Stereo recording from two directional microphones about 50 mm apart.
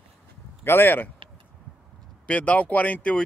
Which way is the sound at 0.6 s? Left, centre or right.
Left.